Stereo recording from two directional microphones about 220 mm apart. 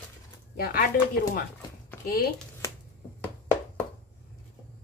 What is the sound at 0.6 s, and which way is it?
Speech, 40° left (ahead or behind).